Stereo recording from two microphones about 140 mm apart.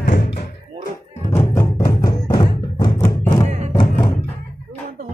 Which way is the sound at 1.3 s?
20° left (ahead or behind).